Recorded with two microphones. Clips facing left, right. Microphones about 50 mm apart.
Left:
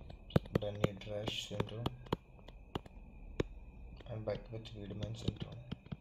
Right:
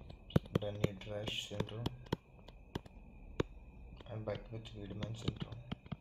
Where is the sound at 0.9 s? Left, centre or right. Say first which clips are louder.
Left 1 dB; right.